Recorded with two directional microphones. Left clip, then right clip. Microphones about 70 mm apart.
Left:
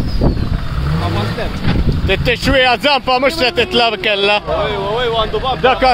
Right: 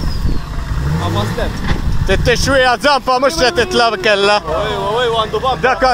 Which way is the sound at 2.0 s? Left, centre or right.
Centre.